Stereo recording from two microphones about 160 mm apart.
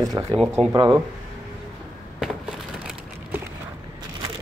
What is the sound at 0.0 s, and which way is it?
Speech, 20° right (ahead or behind).